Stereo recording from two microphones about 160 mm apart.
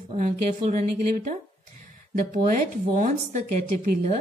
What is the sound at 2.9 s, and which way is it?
Speech, 45° right (ahead or behind).